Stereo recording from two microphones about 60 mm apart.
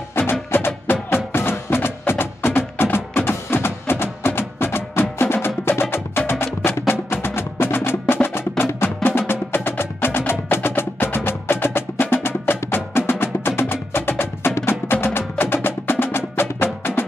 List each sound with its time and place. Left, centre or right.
0.1 s music: left
14.7 s wood block: left
15.1 s music: left